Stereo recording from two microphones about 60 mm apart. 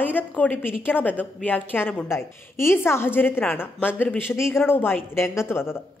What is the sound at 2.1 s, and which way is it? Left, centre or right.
A woman's voice, left.